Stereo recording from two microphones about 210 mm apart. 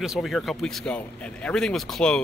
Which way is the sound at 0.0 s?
Centre (ahead or behind).